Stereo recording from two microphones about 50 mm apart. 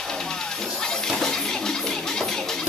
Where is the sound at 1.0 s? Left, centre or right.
Centre.